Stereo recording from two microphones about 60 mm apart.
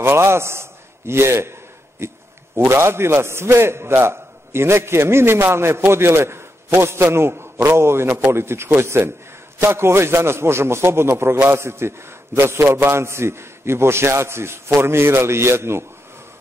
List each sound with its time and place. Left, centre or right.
0.0 s a man's voice: right